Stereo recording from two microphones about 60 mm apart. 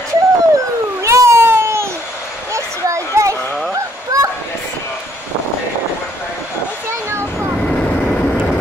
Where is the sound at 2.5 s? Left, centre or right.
Right.